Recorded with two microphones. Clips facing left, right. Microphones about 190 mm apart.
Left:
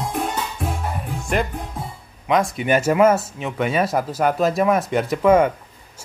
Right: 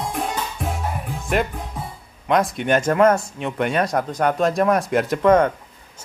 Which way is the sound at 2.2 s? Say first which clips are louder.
Even; centre (ahead or behind).